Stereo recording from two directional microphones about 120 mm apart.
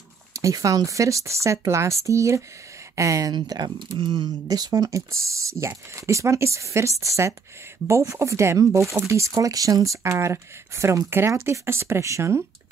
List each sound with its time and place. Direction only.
0.3 s speech: 25° right (ahead or behind)